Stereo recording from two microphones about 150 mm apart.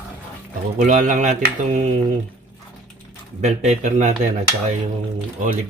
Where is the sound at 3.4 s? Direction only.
50° right (ahead or behind).